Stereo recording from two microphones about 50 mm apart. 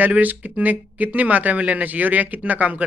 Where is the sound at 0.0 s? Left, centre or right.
Right.